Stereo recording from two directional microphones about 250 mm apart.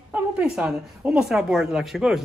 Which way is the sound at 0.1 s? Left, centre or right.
Centre.